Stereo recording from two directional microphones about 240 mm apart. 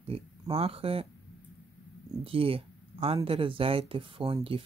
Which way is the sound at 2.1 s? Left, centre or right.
Right.